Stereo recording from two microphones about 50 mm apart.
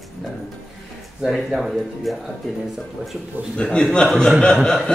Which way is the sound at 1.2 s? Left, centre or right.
Centre.